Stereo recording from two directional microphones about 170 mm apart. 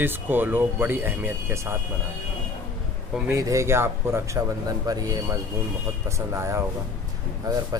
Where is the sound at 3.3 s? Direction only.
20° right (ahead or behind).